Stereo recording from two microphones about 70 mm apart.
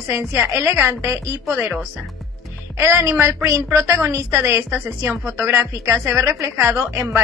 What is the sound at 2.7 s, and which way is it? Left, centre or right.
A woman's voice, right.